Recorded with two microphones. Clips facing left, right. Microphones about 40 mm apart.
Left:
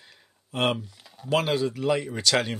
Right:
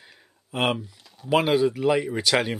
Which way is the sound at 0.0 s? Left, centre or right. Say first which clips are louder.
Right 2 dB; centre.